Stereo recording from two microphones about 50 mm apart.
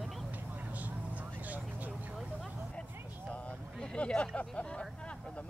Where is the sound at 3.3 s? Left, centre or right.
Left.